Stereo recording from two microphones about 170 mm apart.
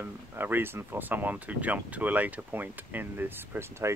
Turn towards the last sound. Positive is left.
turn(degrees=-15)  # may be behind; listen again after turning